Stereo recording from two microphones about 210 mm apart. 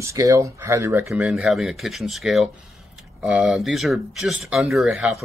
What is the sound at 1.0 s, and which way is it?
Speech, centre (ahead or behind).